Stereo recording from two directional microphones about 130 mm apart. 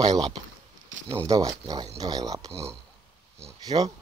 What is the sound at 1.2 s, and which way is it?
Speech, 30° right (ahead or behind).